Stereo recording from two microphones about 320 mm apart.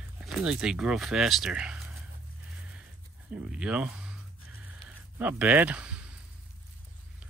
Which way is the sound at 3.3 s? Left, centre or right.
Centre.